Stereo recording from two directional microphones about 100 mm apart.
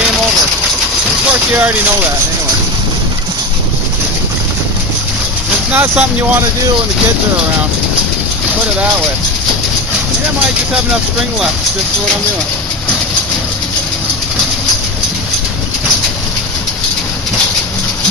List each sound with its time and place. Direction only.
1.5 s speech: 15° right (ahead or behind)
5.7 s speech: 15° right (ahead or behind)